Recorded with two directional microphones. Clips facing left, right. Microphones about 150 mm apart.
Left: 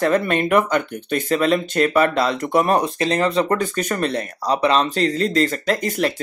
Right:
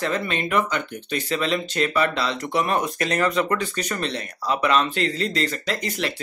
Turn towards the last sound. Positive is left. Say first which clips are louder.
# left 6 dB
turn(degrees=45)  # may be behind; listen again after turning